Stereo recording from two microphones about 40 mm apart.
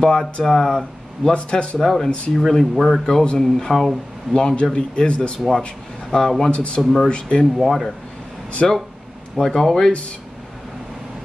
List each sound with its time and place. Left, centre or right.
0.0 s speech: centre
1.3 s a man's voice: left
1.8 s speech: centre
4.4 s a man's voice: left
6.1 s speech: centre
6.5 s a man's voice: left
6.8 s speech: centre
7.1 s a man's voice: left
7.6 s speech: centre